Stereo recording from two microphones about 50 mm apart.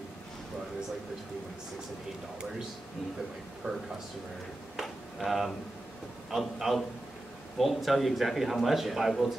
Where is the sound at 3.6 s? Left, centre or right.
Right.